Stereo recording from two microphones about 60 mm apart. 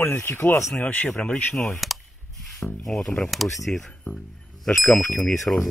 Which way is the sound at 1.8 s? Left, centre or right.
Centre.